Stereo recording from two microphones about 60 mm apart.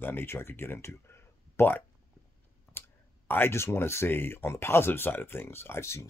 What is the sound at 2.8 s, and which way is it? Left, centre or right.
Clicking, left.